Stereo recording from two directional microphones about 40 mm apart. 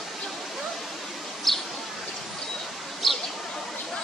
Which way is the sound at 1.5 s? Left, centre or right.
Centre.